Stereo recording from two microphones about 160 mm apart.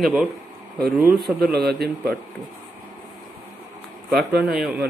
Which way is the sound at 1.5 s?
80° right.